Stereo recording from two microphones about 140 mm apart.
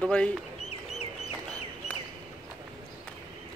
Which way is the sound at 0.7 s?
50° left (ahead or behind).